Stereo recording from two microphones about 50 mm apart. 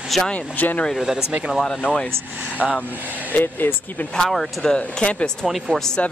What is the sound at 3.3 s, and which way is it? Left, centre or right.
Speech, left.